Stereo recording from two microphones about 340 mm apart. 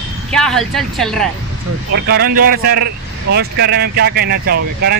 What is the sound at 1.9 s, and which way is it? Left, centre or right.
Speech, right.